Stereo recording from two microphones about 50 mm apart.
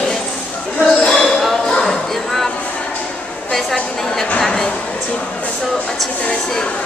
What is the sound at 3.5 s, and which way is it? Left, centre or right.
Speech, centre.